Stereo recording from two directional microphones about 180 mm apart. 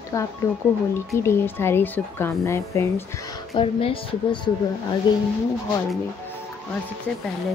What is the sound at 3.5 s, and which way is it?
A woman's voice, 30° left (ahead or behind).